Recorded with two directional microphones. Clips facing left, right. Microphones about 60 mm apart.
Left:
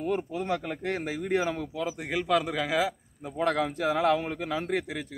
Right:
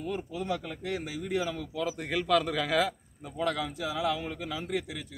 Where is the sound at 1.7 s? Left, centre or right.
Centre.